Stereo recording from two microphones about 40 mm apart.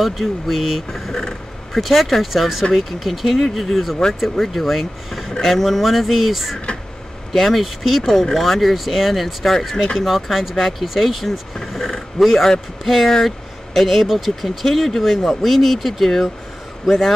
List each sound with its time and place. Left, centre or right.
0.0 s speech: centre
4.7 s speech: centre
8.1 s speech: centre